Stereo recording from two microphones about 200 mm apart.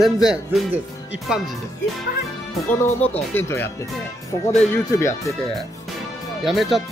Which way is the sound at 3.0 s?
10° left (ahead or behind).